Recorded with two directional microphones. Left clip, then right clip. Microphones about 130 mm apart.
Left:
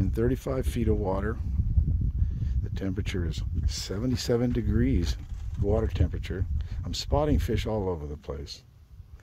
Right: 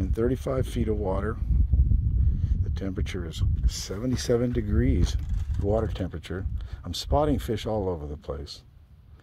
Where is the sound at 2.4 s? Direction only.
20° left (ahead or behind).